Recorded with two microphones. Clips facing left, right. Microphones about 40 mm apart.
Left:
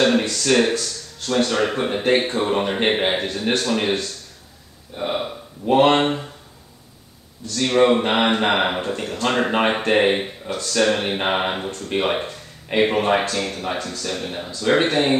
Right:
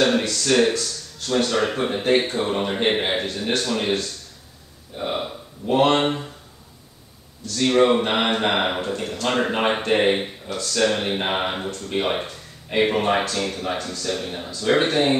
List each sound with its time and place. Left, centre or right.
0.2 s speech: left
0.5 s speech: centre
4.9 s speech: centre
5.7 s speech: left
5.9 s speech: centre
7.5 s speech: centre
10.4 s speech: left